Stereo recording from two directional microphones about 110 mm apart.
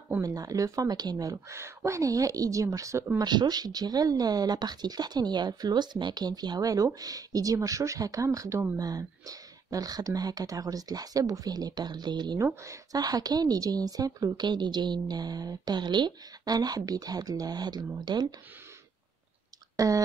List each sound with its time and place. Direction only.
0.2 s a woman's voice: 30° right (ahead or behind)
3.2 s a woman's voice: 40° right (ahead or behind)
19.8 s a woman's voice: 30° right (ahead or behind)